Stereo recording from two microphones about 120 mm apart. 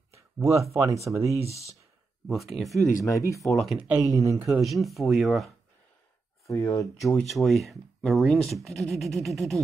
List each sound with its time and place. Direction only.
0.4 s speech: 25° right (ahead or behind)
1.4 s speech: 60° right (ahead or behind)
2.2 s speech: centre (ahead or behind)
3.0 s speech: 25° left (ahead or behind)
3.4 s speech: centre (ahead or behind)
3.7 s speech: 10° right (ahead or behind)
4.0 s speech: 25° right (ahead or behind)
4.6 s speech: centre (ahead or behind)
6.4 s speech: 25° left (ahead or behind)
7.2 s speech: centre (ahead or behind)